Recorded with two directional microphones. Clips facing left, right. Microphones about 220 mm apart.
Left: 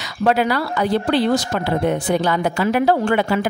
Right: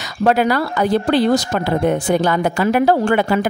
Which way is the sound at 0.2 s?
45° right (ahead or behind).